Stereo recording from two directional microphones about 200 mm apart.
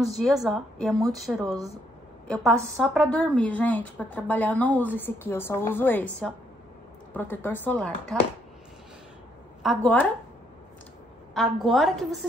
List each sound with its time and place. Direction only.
0.2 s a woman's voice: centre (ahead or behind)
1.4 s a woman's voice: 15° right (ahead or behind)
2.2 s a woman's voice: 5° left (ahead or behind)
9.6 s a woman's voice: 5° left (ahead or behind)
11.3 s a woman's voice: centre (ahead or behind)